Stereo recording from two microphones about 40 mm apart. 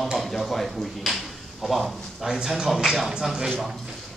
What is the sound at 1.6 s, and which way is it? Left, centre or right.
A man's voice, centre.